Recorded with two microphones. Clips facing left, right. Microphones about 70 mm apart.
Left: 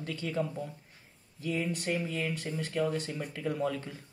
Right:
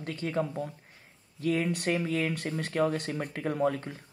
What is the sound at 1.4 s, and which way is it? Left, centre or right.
Speech, right.